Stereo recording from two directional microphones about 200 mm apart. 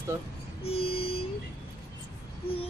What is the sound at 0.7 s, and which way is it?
Speech, 30° left (ahead or behind).